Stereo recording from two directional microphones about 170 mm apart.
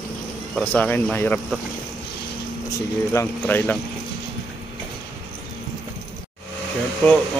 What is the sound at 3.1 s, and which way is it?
Speech, 15° left (ahead or behind).